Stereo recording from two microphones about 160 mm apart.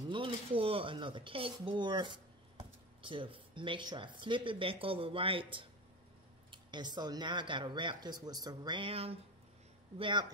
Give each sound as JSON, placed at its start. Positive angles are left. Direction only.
{"t": 0.0, "sound": "speech", "side_deg": -30}